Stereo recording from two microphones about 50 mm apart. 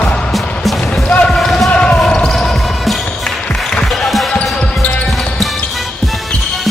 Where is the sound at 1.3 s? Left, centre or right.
Centre.